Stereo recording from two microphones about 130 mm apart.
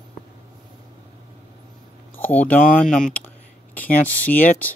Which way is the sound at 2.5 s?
90° left.